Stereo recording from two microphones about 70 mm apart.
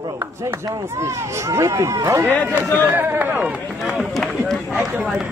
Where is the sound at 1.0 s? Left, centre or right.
Right.